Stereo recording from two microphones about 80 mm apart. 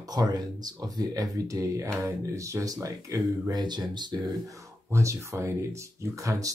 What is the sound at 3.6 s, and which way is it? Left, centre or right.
Speech, right.